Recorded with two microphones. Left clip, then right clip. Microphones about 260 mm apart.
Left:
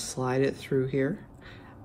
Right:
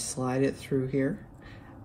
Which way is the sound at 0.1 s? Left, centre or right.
Left.